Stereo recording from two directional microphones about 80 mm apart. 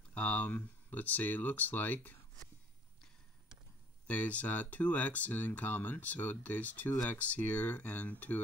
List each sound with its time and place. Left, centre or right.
0.1 s speech: centre
4.1 s speech: centre